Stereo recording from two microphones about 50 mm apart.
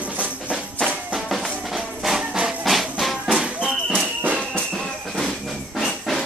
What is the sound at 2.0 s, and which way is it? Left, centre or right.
Music, centre.